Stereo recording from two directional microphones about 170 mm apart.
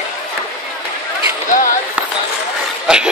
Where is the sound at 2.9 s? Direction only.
5° right (ahead or behind).